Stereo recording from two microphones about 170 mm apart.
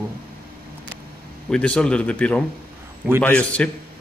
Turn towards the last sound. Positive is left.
turn(degrees=10)  # may be behind; listen again after turning